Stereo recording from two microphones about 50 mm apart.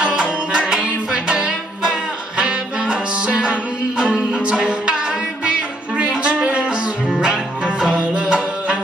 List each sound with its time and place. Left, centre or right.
0.0 s music: centre
7.1 s music: centre
7.9 s music: right